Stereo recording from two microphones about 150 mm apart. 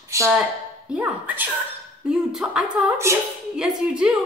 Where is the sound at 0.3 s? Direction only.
5° right (ahead or behind).